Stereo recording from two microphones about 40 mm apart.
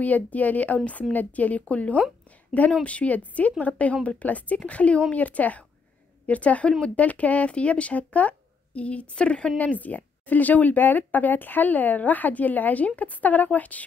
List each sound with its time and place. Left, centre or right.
0.0 s speech: left
9.8 s speech: left